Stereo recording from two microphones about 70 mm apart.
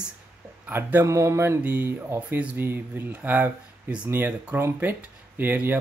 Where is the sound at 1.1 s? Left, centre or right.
Right.